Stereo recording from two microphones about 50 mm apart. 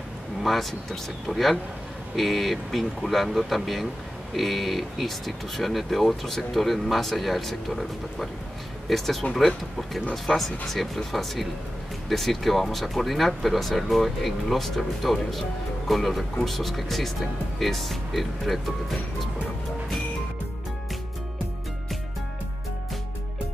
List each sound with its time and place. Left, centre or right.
0.4 s speech: centre